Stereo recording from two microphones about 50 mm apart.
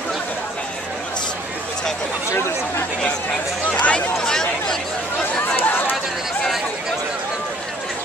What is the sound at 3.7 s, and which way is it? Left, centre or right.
Speech, left.